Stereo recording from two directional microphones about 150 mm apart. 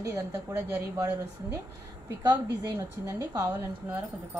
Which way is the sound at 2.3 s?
25° right (ahead or behind).